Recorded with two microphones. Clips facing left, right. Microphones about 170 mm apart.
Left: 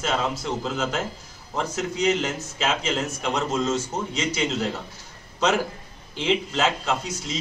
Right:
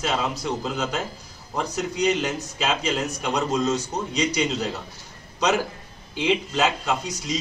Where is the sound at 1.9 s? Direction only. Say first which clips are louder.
Right 1 dB; 15° right (ahead or behind).